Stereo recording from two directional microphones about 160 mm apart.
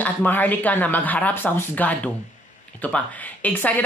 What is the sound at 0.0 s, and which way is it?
A woman's voice, 10° left (ahead or behind).